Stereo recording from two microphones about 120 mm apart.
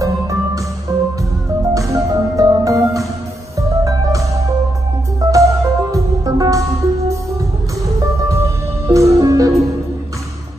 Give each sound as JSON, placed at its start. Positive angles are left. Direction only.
{"t": 0.0, "sound": "music", "side_deg": -25}
{"t": 8.3, "sound": "music", "side_deg": -25}